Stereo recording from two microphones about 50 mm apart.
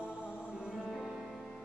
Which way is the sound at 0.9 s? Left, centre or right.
Centre.